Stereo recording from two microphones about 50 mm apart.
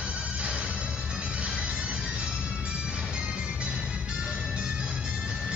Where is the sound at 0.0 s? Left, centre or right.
Right.